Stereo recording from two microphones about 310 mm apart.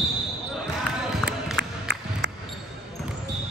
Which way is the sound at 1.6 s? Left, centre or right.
Right.